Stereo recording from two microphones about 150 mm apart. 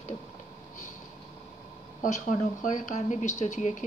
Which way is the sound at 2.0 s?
55° left (ahead or behind).